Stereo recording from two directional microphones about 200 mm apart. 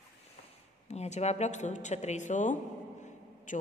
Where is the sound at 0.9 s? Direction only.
35° left (ahead or behind).